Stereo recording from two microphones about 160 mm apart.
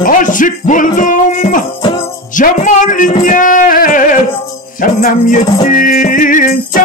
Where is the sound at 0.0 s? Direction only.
55° left (ahead or behind).